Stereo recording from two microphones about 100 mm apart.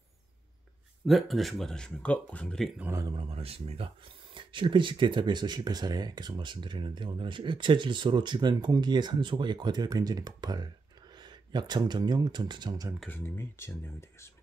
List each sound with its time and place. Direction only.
1.0 s speech: centre (ahead or behind)
3.3 s speech: 80° right; by 12.9 s 40° right (ahead or behind)
13.1 s speech: 20° left (ahead or behind)